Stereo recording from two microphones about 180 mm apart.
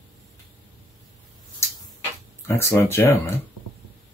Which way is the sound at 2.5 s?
15° left (ahead or behind).